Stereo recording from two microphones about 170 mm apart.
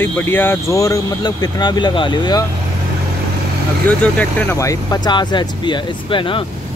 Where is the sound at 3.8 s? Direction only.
10° left (ahead or behind); by 6.4 s 30° left (ahead or behind).